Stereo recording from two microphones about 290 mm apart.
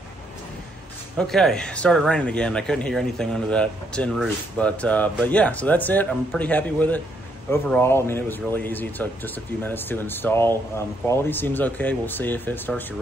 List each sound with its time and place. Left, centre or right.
1.1 s speech: centre